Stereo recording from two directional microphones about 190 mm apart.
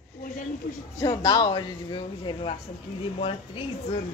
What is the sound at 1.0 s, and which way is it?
A man's voice, 20° left (ahead or behind).